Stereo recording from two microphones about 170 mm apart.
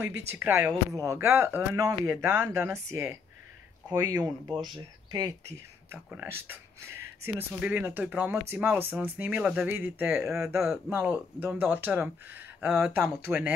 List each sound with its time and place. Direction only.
0.3 s speech: 15° right (ahead or behind)